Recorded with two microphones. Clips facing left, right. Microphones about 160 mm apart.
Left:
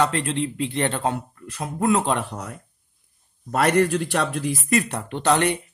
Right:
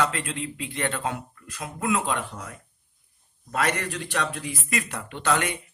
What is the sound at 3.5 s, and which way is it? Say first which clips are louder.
A man's voice: left 8 dB; 40° left (ahead or behind).